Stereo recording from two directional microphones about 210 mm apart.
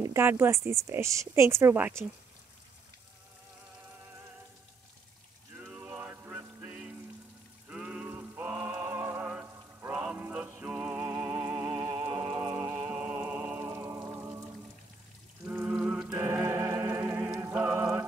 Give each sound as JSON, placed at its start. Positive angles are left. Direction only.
{"t": 0.0, "sound": "a woman's voice", "side_deg": -10}
{"t": 5.7, "sound": "rain on surface", "side_deg": -5}
{"t": 7.7, "sound": "raindrop", "side_deg": -5}
{"t": 9.9, "sound": "music", "side_deg": -5}
{"t": 11.3, "sound": "music", "side_deg": -20}
{"t": 12.2, "sound": "music", "side_deg": -10}
{"t": 15.4, "sound": "music", "side_deg": -5}